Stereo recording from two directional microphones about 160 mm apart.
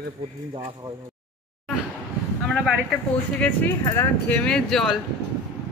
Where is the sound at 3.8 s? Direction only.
10° left (ahead or behind).